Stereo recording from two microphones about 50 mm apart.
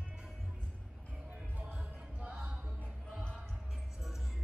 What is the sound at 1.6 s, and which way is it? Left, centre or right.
Music, right.